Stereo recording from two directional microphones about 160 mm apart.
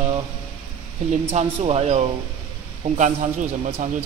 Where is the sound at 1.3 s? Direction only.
40° right (ahead or behind).